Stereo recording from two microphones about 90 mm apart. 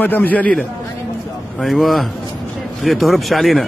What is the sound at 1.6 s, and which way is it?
Speech, centre (ahead or behind).